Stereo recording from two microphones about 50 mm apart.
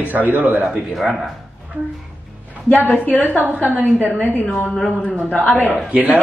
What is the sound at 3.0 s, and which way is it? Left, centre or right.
A woman's voice, left.